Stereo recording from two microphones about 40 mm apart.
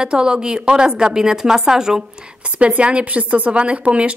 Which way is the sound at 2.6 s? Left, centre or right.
Right.